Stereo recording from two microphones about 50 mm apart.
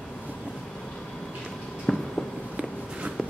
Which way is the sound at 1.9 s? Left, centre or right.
Centre.